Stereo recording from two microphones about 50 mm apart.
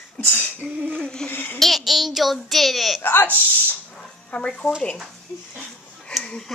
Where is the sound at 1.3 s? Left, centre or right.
Left.